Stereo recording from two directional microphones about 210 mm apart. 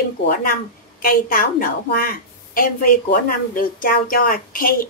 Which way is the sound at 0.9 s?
40° left (ahead or behind).